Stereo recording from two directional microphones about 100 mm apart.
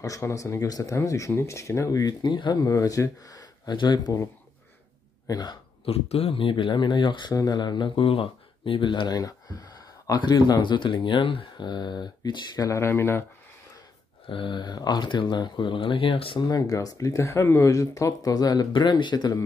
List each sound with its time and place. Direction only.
0.0 s speech: 35° left (ahead or behind)
2.7 s speech: 35° left (ahead or behind)
5.2 s speech: 45° left (ahead or behind)
5.9 s speech: 90° left; by 12.6 s 45° left (ahead or behind)
12.6 s speech: 30° left (ahead or behind)
14.2 s speech: 55° left (ahead or behind)
16.4 s speech: 35° left (ahead or behind)
18.7 s speech: 50° left (ahead or behind)